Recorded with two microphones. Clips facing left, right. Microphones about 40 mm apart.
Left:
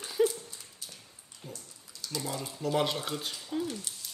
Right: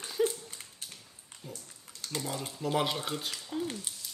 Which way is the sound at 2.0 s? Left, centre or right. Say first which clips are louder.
Even; right.